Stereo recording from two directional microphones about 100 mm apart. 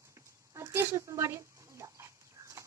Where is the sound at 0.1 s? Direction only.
30° right (ahead or behind).